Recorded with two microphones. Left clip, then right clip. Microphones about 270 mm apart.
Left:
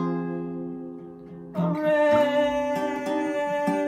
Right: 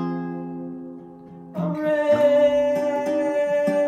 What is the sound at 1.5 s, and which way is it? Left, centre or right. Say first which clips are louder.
Music: even; centre.